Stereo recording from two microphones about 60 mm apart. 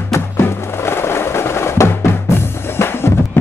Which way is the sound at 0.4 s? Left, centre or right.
Left.